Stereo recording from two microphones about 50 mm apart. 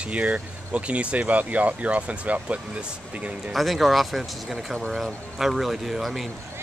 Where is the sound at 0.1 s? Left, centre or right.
Right.